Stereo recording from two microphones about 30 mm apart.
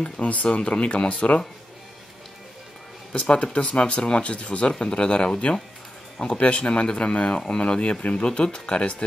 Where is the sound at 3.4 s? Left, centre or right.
Left.